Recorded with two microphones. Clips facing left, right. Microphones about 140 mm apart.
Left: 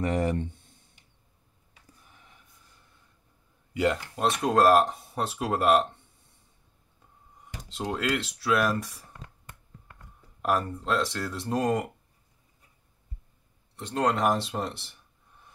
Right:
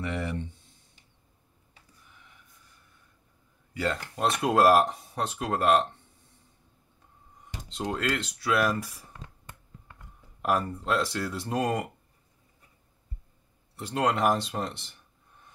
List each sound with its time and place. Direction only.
0.0 s speech: 40° left (ahead or behind)
3.7 s speech: 15° left (ahead or behind)
4.2 s speech: centre (ahead or behind)
7.7 s speech: 5° left (ahead or behind)
10.4 s speech: centre (ahead or behind)
13.7 s speech: 5° right (ahead or behind)